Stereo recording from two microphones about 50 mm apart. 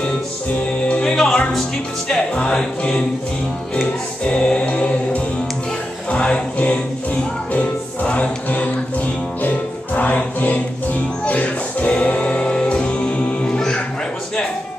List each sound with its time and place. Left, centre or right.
0.6 s music: left